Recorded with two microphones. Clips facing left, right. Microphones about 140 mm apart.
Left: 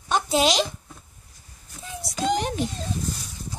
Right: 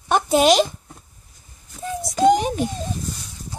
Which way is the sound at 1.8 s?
50° right (ahead or behind).